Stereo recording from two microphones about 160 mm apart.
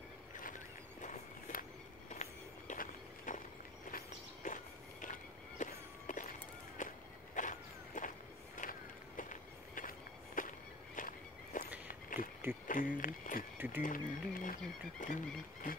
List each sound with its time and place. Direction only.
1.0 s walk: 50° left (ahead or behind)
2.7 s a sound: 50° left (ahead or behind)
3.9 s walk: 55° left (ahead or behind)
7.3 s a sound: 55° left (ahead or behind)
8.5 s run: 55° left (ahead or behind)
11.0 s walk: 55° left (ahead or behind)
11.9 s a sound: 60° left (ahead or behind)
12.6 s speech: 55° left (ahead or behind)
13.6 s speech: 10° right (ahead or behind)
13.8 s speech: 55° left (ahead or behind)